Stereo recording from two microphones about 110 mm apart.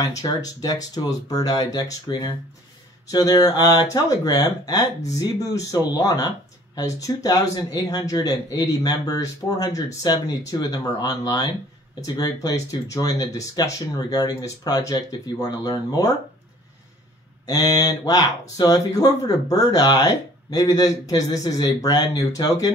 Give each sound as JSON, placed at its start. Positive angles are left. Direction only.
{"t": 0.0, "sound": "speech", "side_deg": 35}
{"t": 17.5, "sound": "speech", "side_deg": 35}